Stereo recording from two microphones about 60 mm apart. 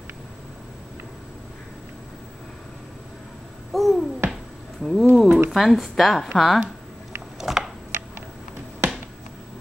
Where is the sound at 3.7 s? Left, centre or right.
Centre.